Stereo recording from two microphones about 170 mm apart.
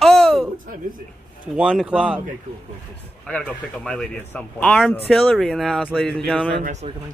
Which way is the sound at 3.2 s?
5° left (ahead or behind).